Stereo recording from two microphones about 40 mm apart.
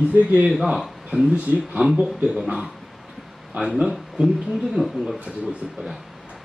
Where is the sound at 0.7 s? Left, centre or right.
Centre.